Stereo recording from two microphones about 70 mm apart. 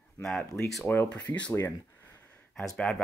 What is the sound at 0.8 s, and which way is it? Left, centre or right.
Speech, left.